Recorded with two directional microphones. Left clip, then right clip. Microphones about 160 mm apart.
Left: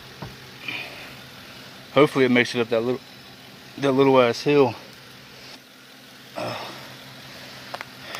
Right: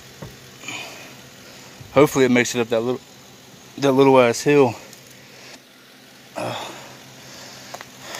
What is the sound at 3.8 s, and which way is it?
Speech, 40° right (ahead or behind).